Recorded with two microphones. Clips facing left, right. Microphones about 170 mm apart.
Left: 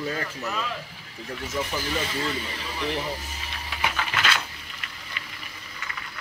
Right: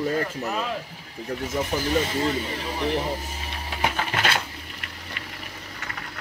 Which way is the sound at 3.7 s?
40° right (ahead or behind).